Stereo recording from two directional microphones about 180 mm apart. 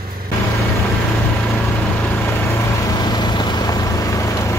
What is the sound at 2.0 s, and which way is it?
Vehicle, 15° left (ahead or behind).